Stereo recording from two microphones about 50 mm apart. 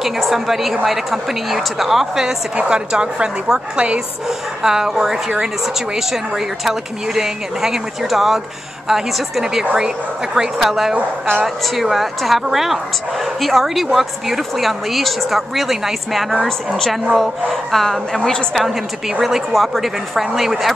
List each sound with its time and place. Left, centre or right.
0.0 s a woman's voice: centre
2.5 s a woman's voice: centre
4.6 s speech: centre
11.0 s a woman's voice: right
11.4 s a woman's voice: centre